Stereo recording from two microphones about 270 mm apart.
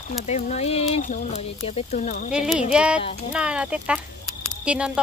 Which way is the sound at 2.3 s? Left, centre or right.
Centre.